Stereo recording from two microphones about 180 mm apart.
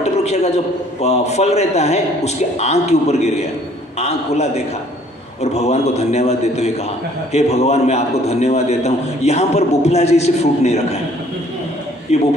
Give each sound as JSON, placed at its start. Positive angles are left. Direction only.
{"t": 0.0, "sound": "a sound", "side_deg": 35}
{"t": 1.0, "sound": "a man's voice", "side_deg": 35}
{"t": 5.4, "sound": "a man's voice", "side_deg": 35}
{"t": 12.1, "sound": "a man's voice", "side_deg": 35}